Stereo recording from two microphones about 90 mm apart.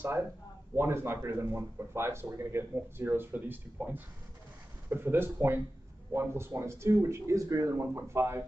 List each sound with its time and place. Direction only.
0.0 s speech: 25° right (ahead or behind)